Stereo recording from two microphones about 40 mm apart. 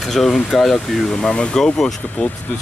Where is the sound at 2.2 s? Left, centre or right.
Left.